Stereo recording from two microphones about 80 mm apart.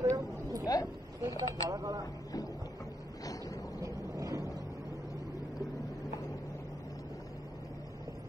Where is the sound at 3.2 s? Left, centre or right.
Left.